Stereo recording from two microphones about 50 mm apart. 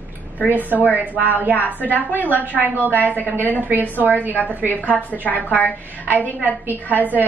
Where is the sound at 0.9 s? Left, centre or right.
Left.